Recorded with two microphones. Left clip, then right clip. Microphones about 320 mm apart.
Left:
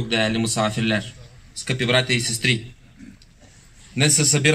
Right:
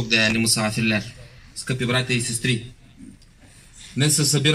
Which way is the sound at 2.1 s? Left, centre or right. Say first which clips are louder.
Left 3 dB; centre.